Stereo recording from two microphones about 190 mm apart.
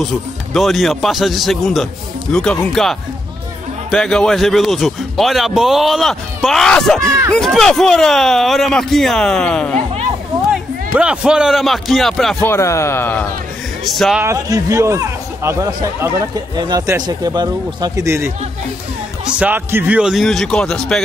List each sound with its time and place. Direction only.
0.0 s a man's voice: centre (ahead or behind)
12.5 s a man's voice: 15° left (ahead or behind)
14.2 s speech: 15° right (ahead or behind)
19.3 s a man's voice: 10° right (ahead or behind)